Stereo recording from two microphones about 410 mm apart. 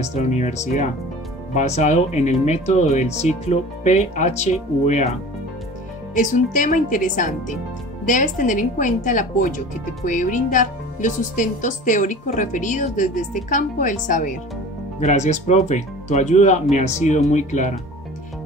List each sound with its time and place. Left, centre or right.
0.0 s speech: centre
6.1 s a woman's voice: centre